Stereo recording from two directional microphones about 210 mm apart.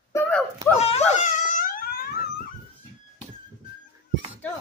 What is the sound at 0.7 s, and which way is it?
Wail, 30° left (ahead or behind).